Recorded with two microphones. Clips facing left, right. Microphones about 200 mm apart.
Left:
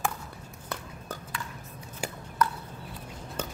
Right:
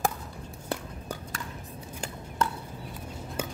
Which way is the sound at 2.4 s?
25° right (ahead or behind).